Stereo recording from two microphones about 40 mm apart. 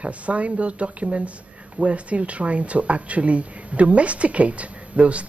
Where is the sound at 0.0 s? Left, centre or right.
Right.